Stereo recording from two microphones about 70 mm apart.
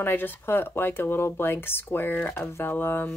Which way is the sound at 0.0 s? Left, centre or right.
Left.